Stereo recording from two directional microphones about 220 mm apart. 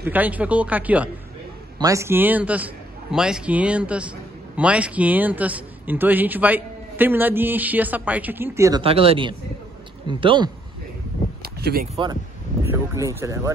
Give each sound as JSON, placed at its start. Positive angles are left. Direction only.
{"t": 0.0, "sound": "a man's voice", "side_deg": -10}
{"t": 8.8, "sound": "speech", "side_deg": -25}
{"t": 11.4, "sound": "a sound", "side_deg": -45}
{"t": 12.9, "sound": "a man's voice", "side_deg": -15}